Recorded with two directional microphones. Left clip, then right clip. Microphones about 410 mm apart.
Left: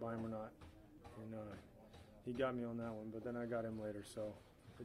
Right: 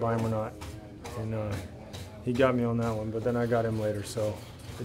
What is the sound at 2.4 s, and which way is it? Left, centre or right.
A man's voice, left.